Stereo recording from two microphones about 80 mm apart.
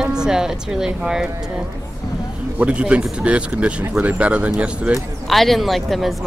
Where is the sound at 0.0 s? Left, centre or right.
Centre.